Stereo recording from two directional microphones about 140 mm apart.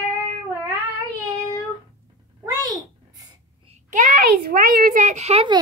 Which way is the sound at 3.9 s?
70° right (ahead or behind).